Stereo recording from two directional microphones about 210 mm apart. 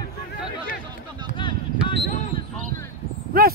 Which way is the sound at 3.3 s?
45° right (ahead or behind).